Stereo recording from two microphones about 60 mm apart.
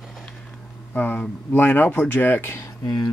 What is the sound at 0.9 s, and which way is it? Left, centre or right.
Speech, left.